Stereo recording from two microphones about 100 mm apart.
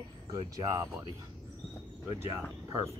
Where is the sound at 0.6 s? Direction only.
35° right (ahead or behind).